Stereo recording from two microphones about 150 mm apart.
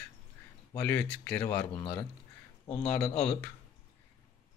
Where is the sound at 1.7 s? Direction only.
35° left (ahead or behind).